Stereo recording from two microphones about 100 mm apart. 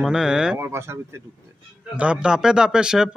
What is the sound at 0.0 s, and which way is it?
Speech, 5° right (ahead or behind).